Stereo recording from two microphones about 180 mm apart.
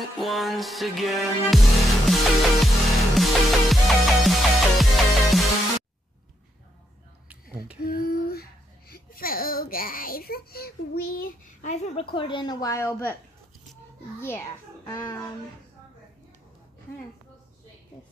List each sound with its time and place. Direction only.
0.2 s music: centre (ahead or behind)
7.2 s a sound: 5° right (ahead or behind)
7.8 s speech: 60° left (ahead or behind); by 13.1 s 15° left (ahead or behind)
14.2 s a child's voice: 15° left (ahead or behind)